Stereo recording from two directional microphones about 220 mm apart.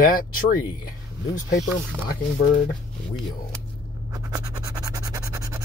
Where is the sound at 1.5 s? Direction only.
40° left (ahead or behind).